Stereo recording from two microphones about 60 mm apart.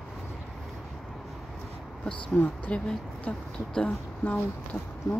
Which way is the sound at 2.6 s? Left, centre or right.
Left.